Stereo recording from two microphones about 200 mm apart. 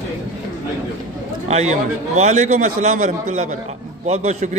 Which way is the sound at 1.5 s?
35° right (ahead or behind).